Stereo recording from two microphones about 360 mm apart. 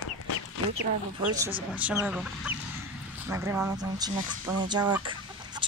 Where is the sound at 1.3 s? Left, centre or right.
Centre.